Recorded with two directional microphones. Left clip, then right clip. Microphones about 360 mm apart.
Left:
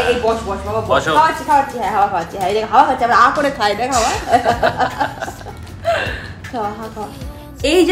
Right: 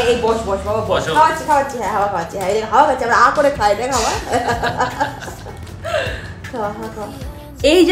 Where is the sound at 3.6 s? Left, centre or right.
Centre.